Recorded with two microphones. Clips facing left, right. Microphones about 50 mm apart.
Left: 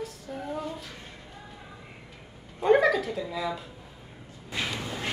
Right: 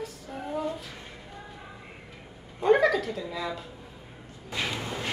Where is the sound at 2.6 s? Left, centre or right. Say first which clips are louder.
Even; centre.